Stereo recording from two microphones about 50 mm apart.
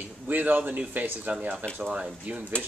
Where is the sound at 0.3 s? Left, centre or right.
Right.